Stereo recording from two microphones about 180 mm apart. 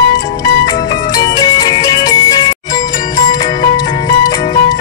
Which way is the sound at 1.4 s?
20° left (ahead or behind).